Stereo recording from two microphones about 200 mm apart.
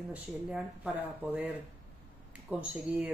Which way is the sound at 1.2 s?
5° right (ahead or behind).